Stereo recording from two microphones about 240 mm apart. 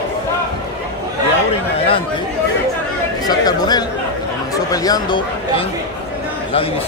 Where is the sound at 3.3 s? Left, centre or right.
Centre.